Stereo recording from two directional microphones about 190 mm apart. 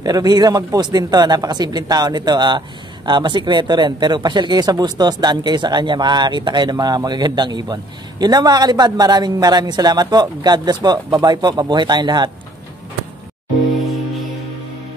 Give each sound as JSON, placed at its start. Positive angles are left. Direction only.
{"t": 0.0, "sound": "speech", "side_deg": -20}